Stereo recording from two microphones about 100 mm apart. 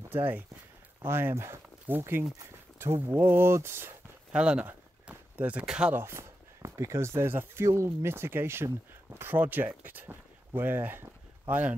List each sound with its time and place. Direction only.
1.0 s speech: 25° right (ahead or behind)
4.3 s speech: 10° right (ahead or behind)
5.9 s speech: 25° right (ahead or behind)
9.8 s a sound: 20° right (ahead or behind)